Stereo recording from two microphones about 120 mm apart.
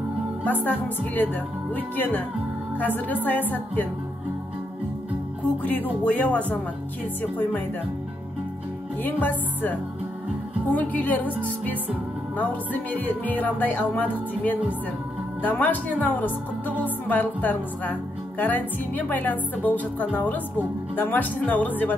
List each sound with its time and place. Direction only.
0.5 s music: 15° left (ahead or behind)
5.6 s music: 15° left (ahead or behind)
9.0 s music: 15° left (ahead or behind)
12.4 s music: 15° left (ahead or behind)
15.6 s music: 15° left (ahead or behind)